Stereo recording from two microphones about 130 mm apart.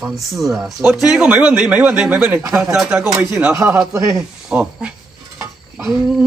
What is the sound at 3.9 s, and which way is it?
Speech, 25° right (ahead or behind).